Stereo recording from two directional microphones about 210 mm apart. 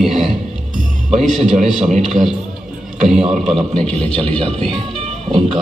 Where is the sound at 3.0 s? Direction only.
Centre (ahead or behind).